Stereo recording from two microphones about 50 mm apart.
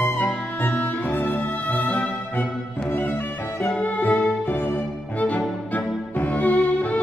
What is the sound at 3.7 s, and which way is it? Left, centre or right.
Music, left.